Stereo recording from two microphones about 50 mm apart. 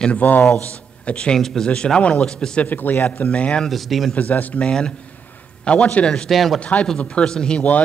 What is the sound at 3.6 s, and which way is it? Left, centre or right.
Speech, centre.